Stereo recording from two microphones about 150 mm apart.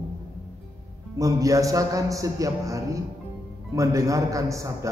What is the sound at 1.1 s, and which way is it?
A man's voice, 20° right (ahead or behind).